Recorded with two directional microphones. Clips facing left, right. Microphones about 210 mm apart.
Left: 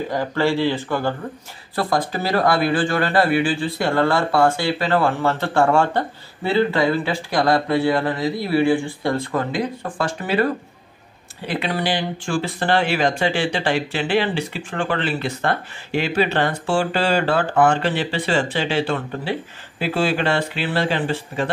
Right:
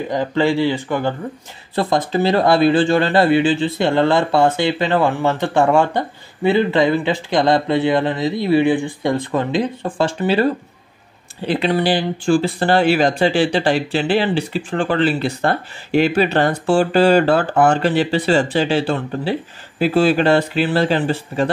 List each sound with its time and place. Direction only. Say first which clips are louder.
0.1 s a man's voice: right 4 dB; 20° right (ahead or behind); by 21.5 s 40° right (ahead or behind)